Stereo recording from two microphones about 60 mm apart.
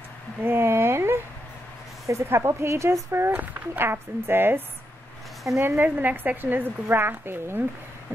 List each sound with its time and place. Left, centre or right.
0.4 s a sound: right
2.2 s speech: right
3.3 s a woman's voice: right